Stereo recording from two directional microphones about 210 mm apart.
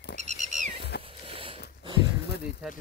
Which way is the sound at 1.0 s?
25° right (ahead or behind).